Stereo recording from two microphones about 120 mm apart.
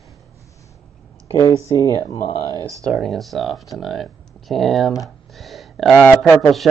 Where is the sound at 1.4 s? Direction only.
25° left (ahead or behind).